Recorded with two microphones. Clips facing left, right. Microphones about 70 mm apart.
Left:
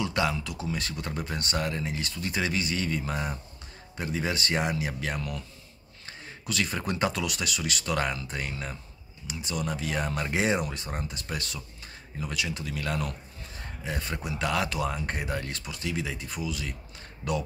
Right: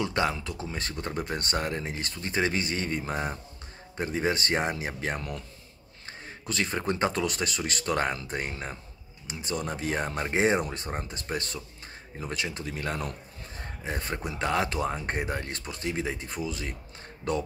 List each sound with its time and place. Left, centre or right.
0.0 s speech: right